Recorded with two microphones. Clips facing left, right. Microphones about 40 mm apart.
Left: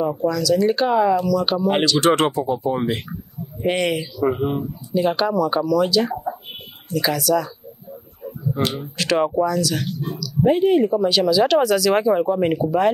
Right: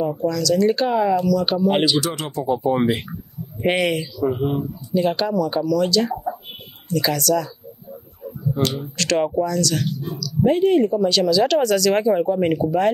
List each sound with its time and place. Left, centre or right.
0.0 s speech: centre
2.0 s speech: left
2.5 s speech: centre
3.7 s speech: right
4.4 s speech: centre
8.9 s speech: centre